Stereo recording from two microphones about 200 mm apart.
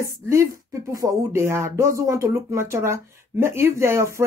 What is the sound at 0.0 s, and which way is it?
Speech, 15° right (ahead or behind).